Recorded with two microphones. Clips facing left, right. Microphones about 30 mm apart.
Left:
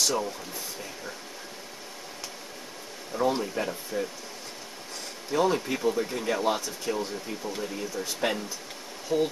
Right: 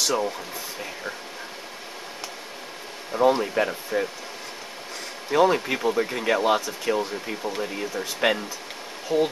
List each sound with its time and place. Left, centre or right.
0.0 s speech: right
3.1 s speech: right
5.3 s speech: right